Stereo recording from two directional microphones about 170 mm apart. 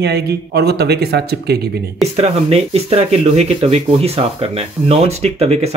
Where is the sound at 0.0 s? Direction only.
75° right (ahead or behind).